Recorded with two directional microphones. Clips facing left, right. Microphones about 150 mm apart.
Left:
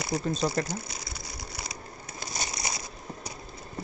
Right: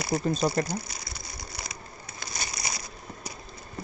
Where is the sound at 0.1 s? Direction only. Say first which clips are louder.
Right 2 dB; 10° right (ahead or behind).